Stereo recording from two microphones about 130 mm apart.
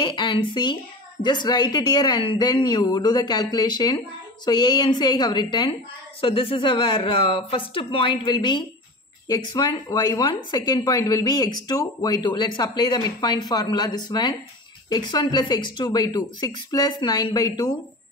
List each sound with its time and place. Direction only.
0.0 s speech: 35° left (ahead or behind)